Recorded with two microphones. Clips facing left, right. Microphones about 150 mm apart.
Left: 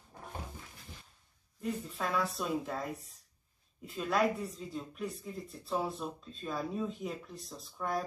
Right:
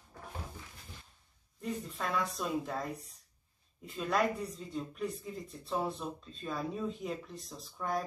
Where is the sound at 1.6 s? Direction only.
Centre (ahead or behind).